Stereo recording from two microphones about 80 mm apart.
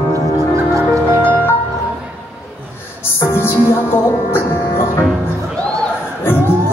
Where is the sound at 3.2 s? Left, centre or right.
Left.